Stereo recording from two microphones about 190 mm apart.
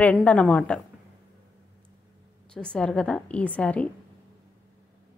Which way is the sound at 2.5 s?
5° left (ahead or behind).